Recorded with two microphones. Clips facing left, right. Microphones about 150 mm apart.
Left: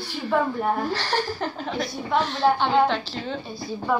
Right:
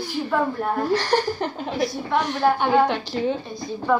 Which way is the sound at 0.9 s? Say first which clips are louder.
Right 5 dB; 15° right (ahead or behind).